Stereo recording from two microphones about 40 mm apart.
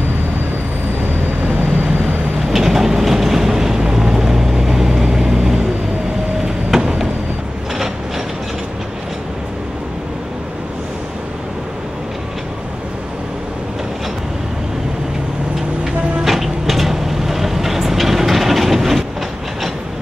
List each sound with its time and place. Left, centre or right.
2.5 s vehicle: centre
16.3 s vehicle: centre